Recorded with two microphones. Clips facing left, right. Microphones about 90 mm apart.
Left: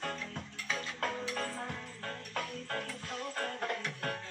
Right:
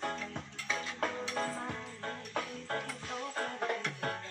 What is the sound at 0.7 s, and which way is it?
Music, 20° right (ahead or behind).